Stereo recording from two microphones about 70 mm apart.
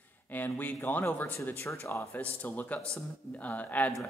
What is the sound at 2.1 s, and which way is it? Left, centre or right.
Speech, left.